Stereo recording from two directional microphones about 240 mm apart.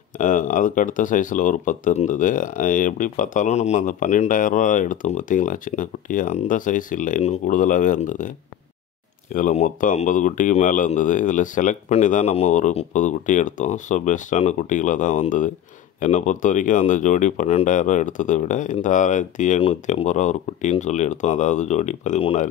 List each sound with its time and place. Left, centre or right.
0.2 s speech: left
9.3 s speech: left